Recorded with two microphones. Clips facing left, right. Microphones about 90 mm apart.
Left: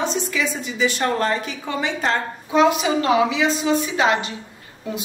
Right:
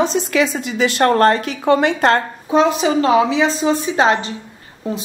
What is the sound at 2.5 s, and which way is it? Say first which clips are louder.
A woman's voice: right 3 dB; 35° right (ahead or behind).